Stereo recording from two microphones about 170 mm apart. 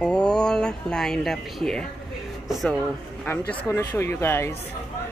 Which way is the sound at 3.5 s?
10° left (ahead or behind).